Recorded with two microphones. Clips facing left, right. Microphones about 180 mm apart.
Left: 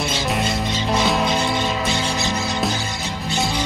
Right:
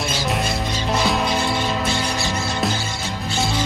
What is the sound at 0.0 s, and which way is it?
Music, centre (ahead or behind).